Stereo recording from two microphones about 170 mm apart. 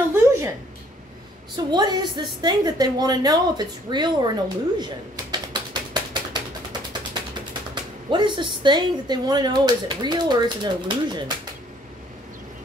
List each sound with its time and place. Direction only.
0.1 s a sound: 15° right (ahead or behind)
1.7 s speech: 25° right (ahead or behind)
4.7 s typewriter: 25° right (ahead or behind)
8.1 s speech: 25° right (ahead or behind)